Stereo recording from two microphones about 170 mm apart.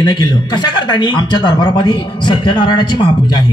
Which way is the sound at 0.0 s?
25° left (ahead or behind).